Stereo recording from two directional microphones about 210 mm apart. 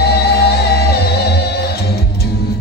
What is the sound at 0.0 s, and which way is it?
Music, 50° left (ahead or behind).